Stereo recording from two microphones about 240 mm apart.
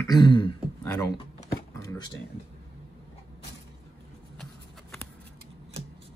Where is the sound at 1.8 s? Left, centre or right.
Centre.